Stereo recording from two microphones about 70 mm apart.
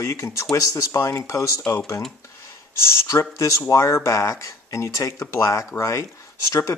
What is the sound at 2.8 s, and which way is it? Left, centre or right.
Speech, left.